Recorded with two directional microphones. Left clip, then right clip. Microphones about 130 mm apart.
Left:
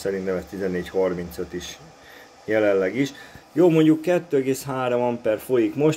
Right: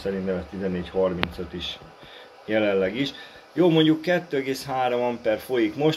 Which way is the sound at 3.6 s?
65° left (ahead or behind).